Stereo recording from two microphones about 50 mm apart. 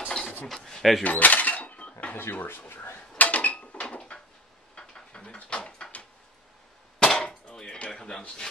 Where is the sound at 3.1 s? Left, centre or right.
Left.